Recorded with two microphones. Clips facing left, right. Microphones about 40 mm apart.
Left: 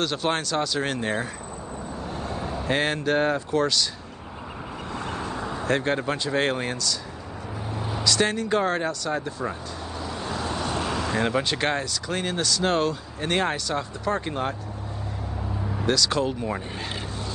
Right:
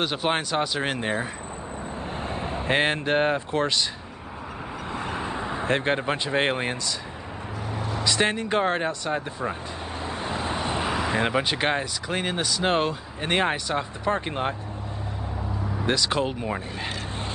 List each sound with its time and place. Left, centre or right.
0.0 s speech: centre
4.9 s speech: right
8.0 s speech: right
15.8 s speech: right